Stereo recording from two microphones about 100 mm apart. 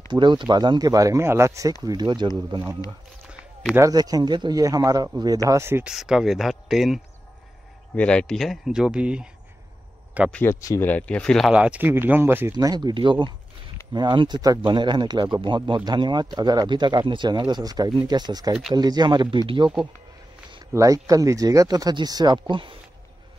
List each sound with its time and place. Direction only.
0.1 s speech: 50° right (ahead or behind)
3.9 s speech: 40° right (ahead or behind); by 5.9 s 25° right (ahead or behind)
5.9 s speech: 5° right (ahead or behind)
7.9 s speech: 10° left (ahead or behind); by 9.3 s 10° right (ahead or behind)
10.4 s speech: 30° left (ahead or behind)
10.8 s speech: 15° left (ahead or behind)
11.5 s speech: 10° right (ahead or behind)
12.5 s speech: 45° right (ahead or behind)
20.7 s speech: 35° right (ahead or behind); by 22.8 s 55° right (ahead or behind)